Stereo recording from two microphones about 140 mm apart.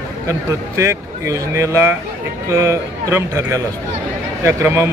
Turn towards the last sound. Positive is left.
turn(degrees=-20)  # may be behind; listen again after turning